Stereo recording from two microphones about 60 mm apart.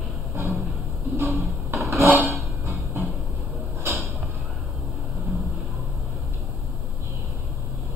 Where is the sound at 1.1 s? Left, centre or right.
Right.